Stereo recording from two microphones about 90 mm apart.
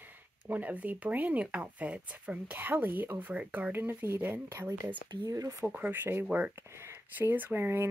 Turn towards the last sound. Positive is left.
turn(degrees=-30)  # may be behind; listen again after turning